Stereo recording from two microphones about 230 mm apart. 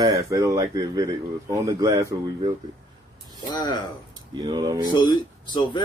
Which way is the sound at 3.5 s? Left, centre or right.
Centre.